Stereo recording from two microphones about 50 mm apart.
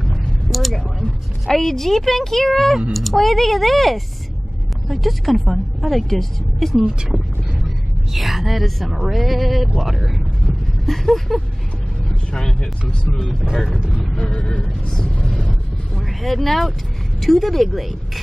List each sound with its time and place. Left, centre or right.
0.5 s a sound: centre
0.7 s speech: centre
6.8 s speech: centre
10.9 s a sound: centre
12.3 s speech: centre
13.3 s speech: centre
13.7 s speech: centre
14.1 s a sound: left
14.9 s vehicle: centre
16.0 s speech: centre